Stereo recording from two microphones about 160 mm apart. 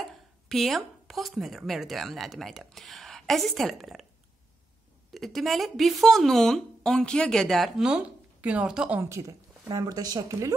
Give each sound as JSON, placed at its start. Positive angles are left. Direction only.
{"t": 0.0, "sound": "speech", "side_deg": 0}
{"t": 5.1, "sound": "speech", "side_deg": 0}